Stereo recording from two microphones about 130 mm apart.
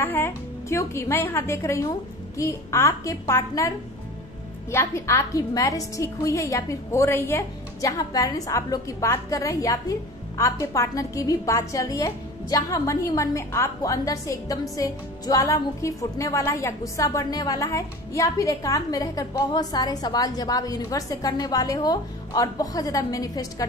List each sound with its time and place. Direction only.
0.0 s a woman's voice: 15° left (ahead or behind)